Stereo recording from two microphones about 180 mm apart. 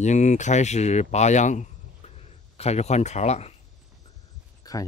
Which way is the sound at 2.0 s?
35° left (ahead or behind).